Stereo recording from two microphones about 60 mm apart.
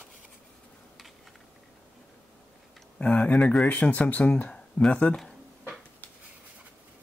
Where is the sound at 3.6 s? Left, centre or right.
Left.